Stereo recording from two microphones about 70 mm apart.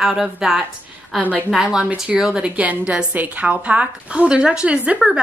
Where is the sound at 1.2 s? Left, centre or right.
Right.